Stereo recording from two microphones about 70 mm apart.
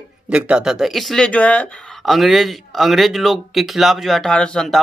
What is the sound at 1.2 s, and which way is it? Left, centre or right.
Speech, centre.